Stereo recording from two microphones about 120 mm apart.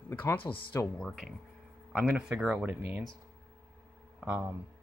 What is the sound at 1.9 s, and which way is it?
Speech, 10° right (ahead or behind).